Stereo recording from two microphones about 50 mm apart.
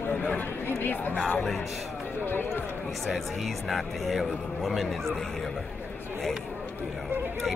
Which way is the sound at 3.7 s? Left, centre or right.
Centre.